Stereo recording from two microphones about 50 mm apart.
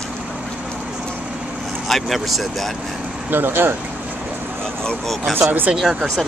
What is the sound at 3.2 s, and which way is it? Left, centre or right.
Speech, right.